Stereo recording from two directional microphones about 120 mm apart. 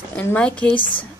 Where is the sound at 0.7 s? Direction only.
45° left (ahead or behind).